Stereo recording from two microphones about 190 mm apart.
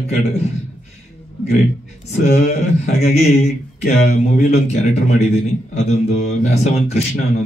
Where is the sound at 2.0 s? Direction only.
35° left (ahead or behind).